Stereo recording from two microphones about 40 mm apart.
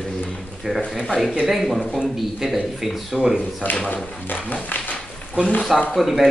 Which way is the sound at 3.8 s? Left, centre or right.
Left.